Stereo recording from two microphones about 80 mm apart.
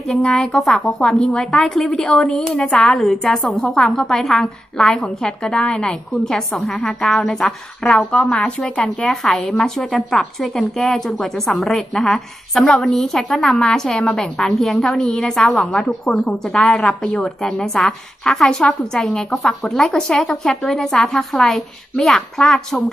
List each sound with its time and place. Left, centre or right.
0.1 s a woman's voice: centre
1.2 s a woman's voice: centre
9.1 s a woman's voice: centre
16.1 s a woman's voice: centre